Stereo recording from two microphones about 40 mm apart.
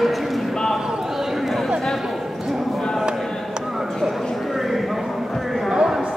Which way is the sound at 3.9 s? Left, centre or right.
Centre.